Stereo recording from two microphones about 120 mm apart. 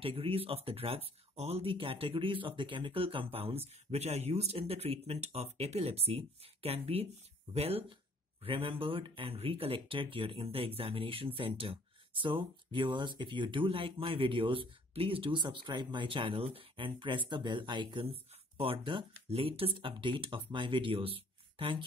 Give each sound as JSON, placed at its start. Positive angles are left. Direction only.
{"t": 0.0, "sound": "speech", "side_deg": -50}